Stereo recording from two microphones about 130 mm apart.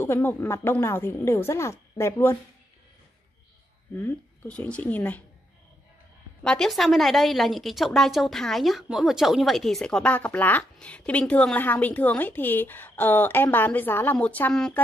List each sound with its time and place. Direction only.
0.0 s a woman's voice: 15° left (ahead or behind)
4.0 s a woman's voice: 10° left (ahead or behind)
6.4 s a woman's voice: 5° left (ahead or behind)